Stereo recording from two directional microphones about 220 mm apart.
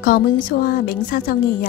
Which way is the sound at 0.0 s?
40° left (ahead or behind).